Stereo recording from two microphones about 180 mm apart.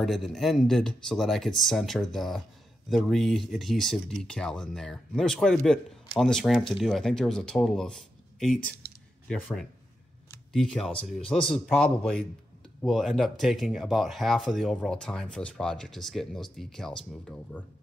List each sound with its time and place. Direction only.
0.0 s speech: centre (ahead or behind)